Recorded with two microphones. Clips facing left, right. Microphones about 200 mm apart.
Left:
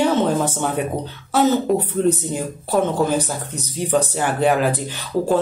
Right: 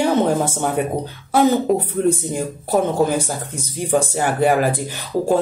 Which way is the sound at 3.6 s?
45° right (ahead or behind).